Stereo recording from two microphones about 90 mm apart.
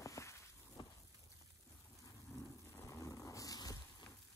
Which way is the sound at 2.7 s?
35° left (ahead or behind).